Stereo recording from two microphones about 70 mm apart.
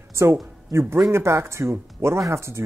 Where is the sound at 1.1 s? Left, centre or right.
Right.